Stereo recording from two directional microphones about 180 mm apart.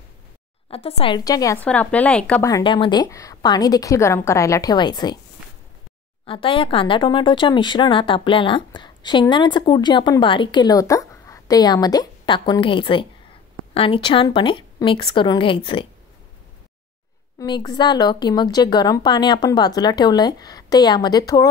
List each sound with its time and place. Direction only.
0.7 s speech: 30° left (ahead or behind); by 2.4 s 5° left (ahead or behind)
2.4 s speech: 25° left (ahead or behind)
6.2 s speech: 30° left (ahead or behind)
17.4 s speech: 25° left (ahead or behind)